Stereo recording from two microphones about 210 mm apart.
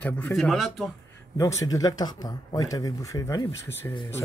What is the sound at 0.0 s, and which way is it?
Speech, 5° left (ahead or behind).